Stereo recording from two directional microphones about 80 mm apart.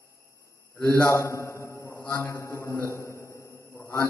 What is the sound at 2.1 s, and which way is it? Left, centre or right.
A man's voice, left.